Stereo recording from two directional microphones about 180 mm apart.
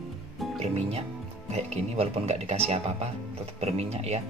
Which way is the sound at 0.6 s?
35° right (ahead or behind).